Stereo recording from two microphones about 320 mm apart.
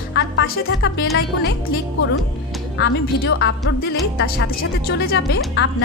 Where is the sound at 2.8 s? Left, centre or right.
Left.